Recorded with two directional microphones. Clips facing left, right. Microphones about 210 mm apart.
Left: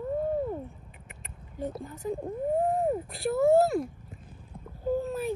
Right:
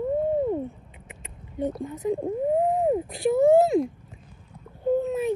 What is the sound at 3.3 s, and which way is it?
Speech, 15° right (ahead or behind).